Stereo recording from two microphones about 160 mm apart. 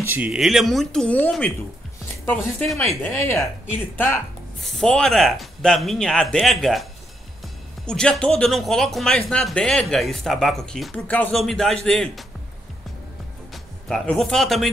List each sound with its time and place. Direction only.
0.1 s speech: 5° right (ahead or behind); by 1.5 s 10° left (ahead or behind)
2.6 s speech: centre (ahead or behind)
3.0 s speech: 15° left (ahead or behind)
4.6 s speech: centre (ahead or behind)
13.5 s speech: 5° left (ahead or behind)